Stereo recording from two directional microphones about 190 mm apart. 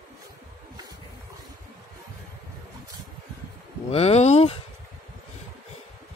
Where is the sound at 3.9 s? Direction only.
30° left (ahead or behind).